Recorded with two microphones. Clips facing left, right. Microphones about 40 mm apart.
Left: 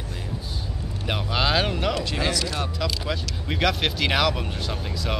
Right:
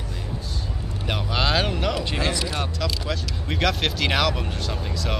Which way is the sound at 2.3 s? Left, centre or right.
Centre.